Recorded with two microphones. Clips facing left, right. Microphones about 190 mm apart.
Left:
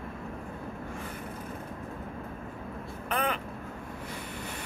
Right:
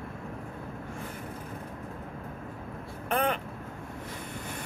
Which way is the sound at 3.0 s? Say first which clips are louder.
Right 3 dB; 45° right (ahead or behind).